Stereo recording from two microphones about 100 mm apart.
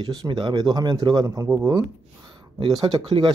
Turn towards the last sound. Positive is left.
turn(degrees=-50)  # may be behind; listen again after turning